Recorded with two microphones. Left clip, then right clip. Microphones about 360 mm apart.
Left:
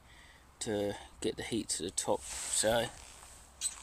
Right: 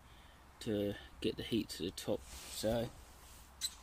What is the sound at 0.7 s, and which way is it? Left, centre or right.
Speech, left.